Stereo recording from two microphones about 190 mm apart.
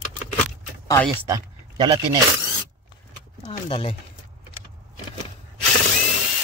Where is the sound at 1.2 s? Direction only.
20° right (ahead or behind).